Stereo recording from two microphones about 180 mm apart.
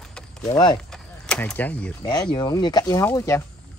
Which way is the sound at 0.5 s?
25° left (ahead or behind).